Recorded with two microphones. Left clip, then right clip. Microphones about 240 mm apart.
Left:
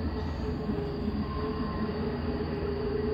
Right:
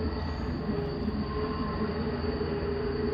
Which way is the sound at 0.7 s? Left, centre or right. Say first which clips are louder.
Right 1 dB; centre.